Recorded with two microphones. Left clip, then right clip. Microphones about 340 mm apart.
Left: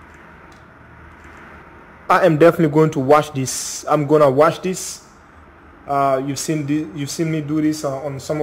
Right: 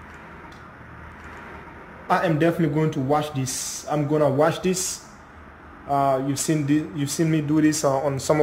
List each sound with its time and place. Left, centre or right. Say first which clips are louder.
2.0 s speech: left 9 dB; centre
5.9 s speech: left 4 dB; centre